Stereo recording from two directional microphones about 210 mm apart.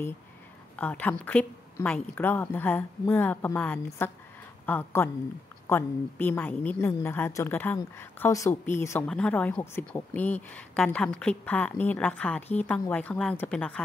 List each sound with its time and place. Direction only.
0.7 s a woman's voice: 5° left (ahead or behind)